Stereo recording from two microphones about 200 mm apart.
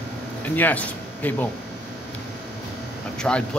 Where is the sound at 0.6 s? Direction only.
10° left (ahead or behind).